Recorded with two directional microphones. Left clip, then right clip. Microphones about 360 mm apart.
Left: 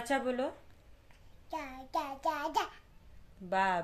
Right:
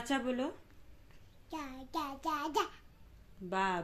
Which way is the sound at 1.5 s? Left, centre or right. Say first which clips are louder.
Left 3 dB; centre.